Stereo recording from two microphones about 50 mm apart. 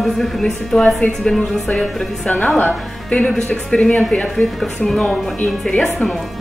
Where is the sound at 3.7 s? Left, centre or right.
Centre.